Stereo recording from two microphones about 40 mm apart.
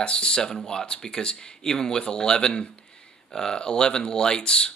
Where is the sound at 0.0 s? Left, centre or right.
Left.